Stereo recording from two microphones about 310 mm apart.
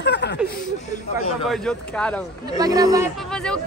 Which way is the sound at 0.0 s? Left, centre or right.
Left.